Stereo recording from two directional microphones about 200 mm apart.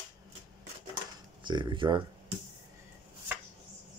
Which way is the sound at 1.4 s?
25° right (ahead or behind).